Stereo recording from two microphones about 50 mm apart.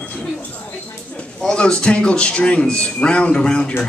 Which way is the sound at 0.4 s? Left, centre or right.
Left.